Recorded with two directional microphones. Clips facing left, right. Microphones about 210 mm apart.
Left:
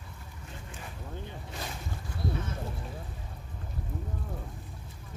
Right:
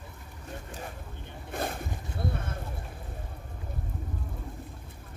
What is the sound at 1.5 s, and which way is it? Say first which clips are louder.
Boat: right 9 dB; 55° right (ahead or behind).